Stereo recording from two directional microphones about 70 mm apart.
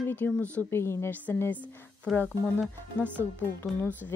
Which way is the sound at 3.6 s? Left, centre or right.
Left.